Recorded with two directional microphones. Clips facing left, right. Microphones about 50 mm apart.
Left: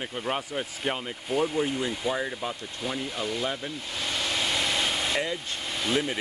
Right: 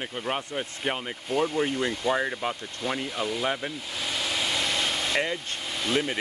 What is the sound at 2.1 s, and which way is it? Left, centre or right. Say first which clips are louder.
Speech: right 3 dB; right.